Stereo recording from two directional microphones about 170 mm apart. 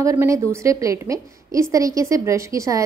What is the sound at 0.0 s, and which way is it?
A woman's voice, 15° right (ahead or behind).